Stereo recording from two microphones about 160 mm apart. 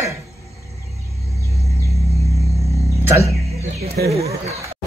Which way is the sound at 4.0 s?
80° right.